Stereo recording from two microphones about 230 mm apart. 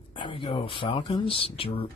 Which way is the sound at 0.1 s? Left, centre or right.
Left.